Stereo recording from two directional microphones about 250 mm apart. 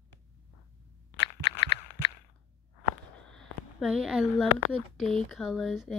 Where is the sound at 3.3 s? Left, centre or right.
Centre.